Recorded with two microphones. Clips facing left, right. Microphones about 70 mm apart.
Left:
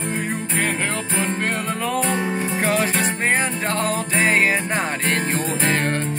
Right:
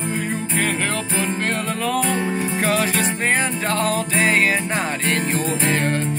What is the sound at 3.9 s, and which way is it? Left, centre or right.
Music, left.